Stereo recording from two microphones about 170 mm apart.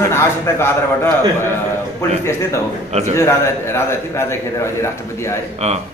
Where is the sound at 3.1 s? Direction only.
15° left (ahead or behind).